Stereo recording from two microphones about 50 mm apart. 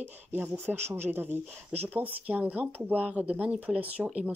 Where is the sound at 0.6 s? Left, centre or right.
Right.